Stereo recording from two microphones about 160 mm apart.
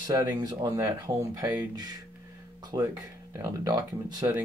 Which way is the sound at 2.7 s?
35° right (ahead or behind).